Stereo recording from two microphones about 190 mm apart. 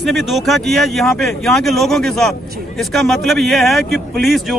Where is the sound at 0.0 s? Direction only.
Centre (ahead or behind).